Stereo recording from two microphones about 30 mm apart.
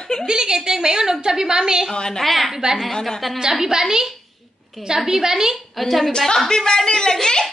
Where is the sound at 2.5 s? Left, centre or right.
Centre.